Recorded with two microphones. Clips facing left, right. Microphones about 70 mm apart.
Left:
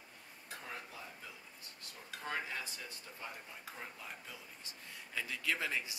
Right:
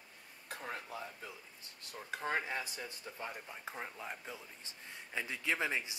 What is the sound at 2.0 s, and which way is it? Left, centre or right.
Dishes, right.